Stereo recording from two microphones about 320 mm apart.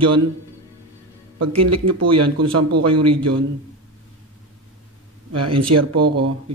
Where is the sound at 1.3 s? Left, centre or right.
Right.